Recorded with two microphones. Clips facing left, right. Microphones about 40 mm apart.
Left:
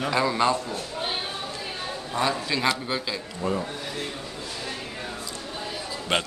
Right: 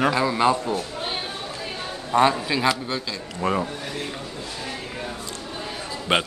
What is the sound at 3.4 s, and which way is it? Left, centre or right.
Speech, right.